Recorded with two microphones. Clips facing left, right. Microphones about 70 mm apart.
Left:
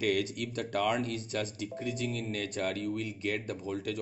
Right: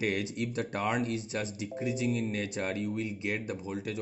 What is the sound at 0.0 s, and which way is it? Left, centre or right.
Speech, right.